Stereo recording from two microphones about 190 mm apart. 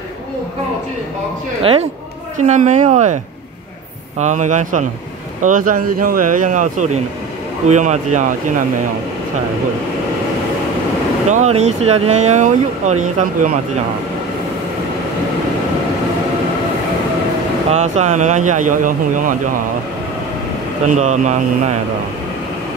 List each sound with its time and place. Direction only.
1.6 s speech: 30° right (ahead or behind)
4.2 s speech: 40° right (ahead or behind)
11.2 s speech: 35° right (ahead or behind)
17.6 s speech: 35° right (ahead or behind)
20.9 s speech: 40° right (ahead or behind)